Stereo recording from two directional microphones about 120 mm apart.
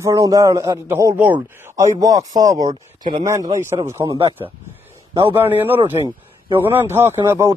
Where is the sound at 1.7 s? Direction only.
30° right (ahead or behind).